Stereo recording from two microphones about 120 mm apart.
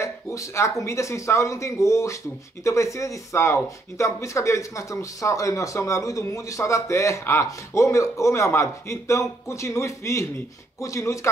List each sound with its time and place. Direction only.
0.0 s speech: 25° left (ahead or behind)